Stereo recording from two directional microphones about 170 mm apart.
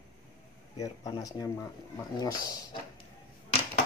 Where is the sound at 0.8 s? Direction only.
20° left (ahead or behind).